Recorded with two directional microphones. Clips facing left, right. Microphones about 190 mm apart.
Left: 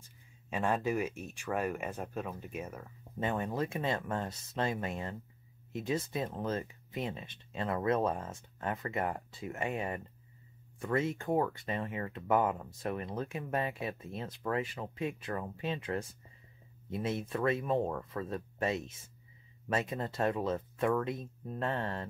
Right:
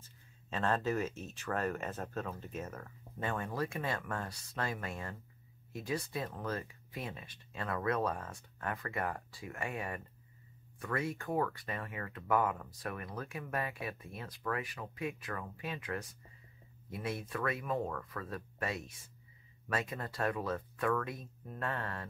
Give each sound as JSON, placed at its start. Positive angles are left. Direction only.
{"t": 0.0, "sound": "speech", "side_deg": 15}